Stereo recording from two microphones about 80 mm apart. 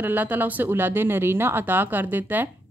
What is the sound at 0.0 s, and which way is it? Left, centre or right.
Speech, right.